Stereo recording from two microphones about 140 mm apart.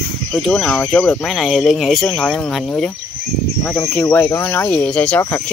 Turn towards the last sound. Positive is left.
turn(degrees=20)  # may be behind; listen again after turning